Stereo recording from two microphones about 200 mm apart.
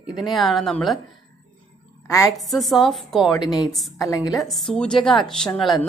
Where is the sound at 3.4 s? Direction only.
20° left (ahead or behind).